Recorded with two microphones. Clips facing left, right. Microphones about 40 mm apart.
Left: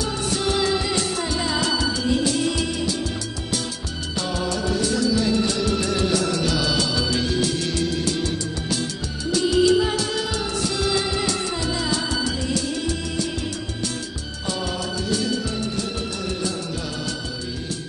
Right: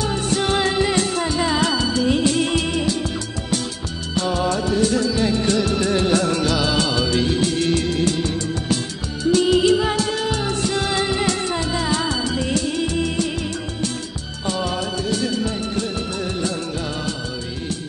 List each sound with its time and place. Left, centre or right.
0.0 s music: right
2.0 s music of bollywood: right
4.1 s music: right
5.8 s music of bollywood: right
7.2 s music: right
14.4 s music of bollywood: right